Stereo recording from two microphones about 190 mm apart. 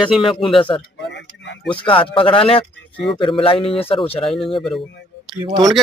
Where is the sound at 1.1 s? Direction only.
70° left (ahead or behind).